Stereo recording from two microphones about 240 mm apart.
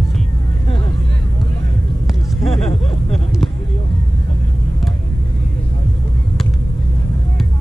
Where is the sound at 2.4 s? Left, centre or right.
Left.